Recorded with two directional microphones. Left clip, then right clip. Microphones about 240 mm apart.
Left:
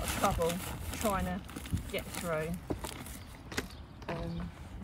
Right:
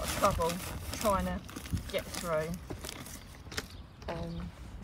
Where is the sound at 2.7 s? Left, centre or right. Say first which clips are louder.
Left 3 dB; left.